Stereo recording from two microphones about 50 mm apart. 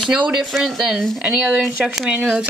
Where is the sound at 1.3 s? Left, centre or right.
Centre.